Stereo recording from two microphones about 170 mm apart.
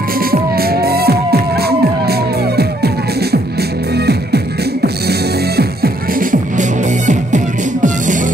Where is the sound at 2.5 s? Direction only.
70° right (ahead or behind).